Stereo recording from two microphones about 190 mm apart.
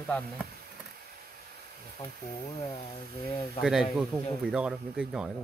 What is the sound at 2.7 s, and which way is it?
Speech, 20° left (ahead or behind).